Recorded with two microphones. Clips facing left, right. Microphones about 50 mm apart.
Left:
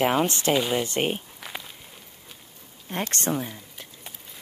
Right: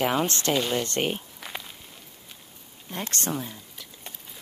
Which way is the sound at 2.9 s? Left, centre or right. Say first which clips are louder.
Left 3 dB; left.